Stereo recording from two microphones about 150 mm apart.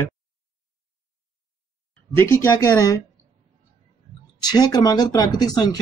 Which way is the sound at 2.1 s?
25° left (ahead or behind).